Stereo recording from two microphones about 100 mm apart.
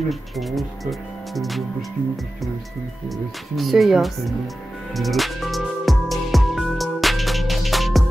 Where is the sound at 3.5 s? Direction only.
Centre (ahead or behind).